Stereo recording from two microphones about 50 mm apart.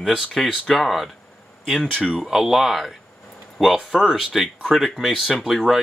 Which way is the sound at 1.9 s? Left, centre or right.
Centre.